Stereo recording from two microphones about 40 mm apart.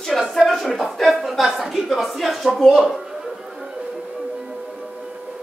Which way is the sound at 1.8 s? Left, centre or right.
Centre.